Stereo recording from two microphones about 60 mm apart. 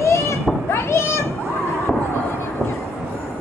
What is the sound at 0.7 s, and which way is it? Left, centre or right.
Children playing, left.